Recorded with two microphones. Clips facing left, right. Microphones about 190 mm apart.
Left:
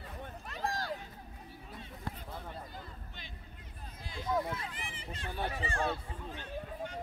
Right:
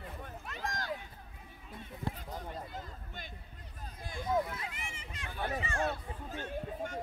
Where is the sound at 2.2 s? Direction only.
40° right (ahead or behind).